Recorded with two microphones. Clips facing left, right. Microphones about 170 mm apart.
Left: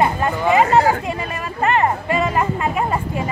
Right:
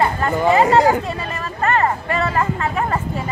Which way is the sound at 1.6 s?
15° left (ahead or behind).